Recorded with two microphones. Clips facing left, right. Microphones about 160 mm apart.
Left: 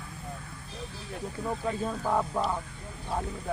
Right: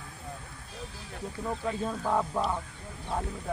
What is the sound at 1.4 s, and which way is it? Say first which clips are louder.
Speech: left 1 dB; centre (ahead or behind).